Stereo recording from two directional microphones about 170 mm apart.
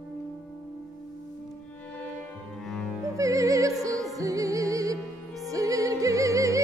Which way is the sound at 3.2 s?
20° right (ahead or behind).